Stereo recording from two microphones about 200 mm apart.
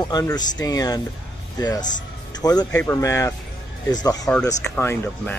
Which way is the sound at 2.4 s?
15° left (ahead or behind).